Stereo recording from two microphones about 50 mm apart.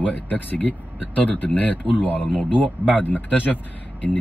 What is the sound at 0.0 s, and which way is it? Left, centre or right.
Speech, left.